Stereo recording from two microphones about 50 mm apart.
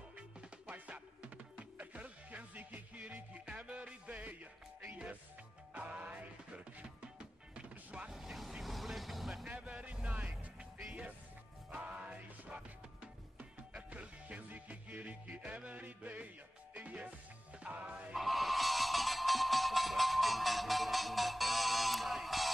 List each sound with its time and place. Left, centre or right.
0.7 s music: right
5.8 s music: right
8.1 s vehicle: centre
9.5 s speech: right
10.8 s music: right
18.1 s music: centre